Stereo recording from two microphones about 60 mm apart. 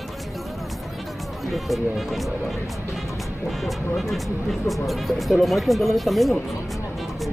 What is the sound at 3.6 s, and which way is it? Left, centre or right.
Speech, centre.